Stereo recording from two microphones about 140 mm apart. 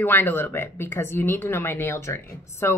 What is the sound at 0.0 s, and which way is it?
A woman's voice, 15° left (ahead or behind).